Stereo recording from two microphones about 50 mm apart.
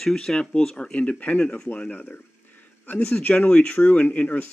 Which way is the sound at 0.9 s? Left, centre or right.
Left.